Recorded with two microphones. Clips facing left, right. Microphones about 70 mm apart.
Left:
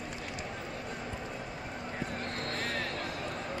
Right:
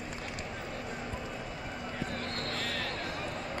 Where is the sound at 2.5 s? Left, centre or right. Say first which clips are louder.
Left 3 dB; left.